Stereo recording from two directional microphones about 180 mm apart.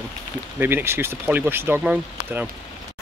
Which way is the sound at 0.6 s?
10° right (ahead or behind).